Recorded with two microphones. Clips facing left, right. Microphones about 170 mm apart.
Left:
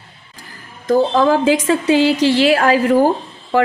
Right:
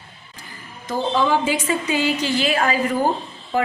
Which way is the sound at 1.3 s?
90° left.